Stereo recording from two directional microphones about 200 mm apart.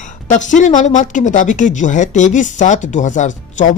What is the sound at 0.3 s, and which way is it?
Speech, 40° left (ahead or behind).